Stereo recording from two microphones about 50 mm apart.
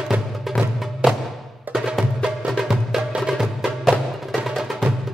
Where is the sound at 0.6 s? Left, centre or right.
Centre.